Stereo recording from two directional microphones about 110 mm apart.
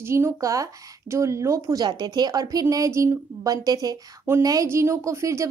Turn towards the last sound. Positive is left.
turn(degrees=-25)  # may be behind; listen again after turning